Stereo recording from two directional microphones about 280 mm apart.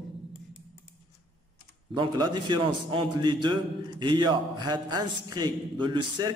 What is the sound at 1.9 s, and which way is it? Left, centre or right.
A man's voice, centre.